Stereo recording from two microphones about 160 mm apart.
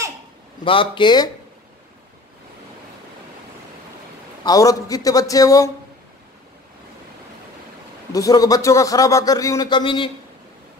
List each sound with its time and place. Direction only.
0.7 s a man's voice: 30° left (ahead or behind)
4.5 s a man's voice: 20° left (ahead or behind)
8.1 s a man's voice: 20° left (ahead or behind)